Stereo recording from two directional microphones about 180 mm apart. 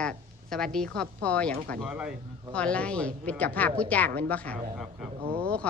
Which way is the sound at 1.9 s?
10° right (ahead or behind).